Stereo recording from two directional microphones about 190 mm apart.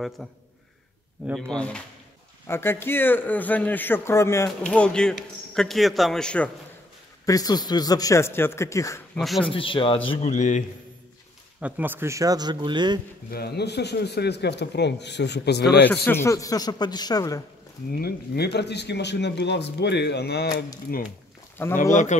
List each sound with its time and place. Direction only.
0.2 s a man's voice: centre (ahead or behind)
7.2 s a man's voice: 20° left (ahead or behind)
9.4 s speech: 30° left (ahead or behind)
11.6 s speech: 10° right (ahead or behind)
13.3 s speech: 60° left (ahead or behind)
15.9 s speech: 10° left (ahead or behind)
17.9 s speech: 55° left (ahead or behind)
21.6 s a man's voice: 10° left (ahead or behind)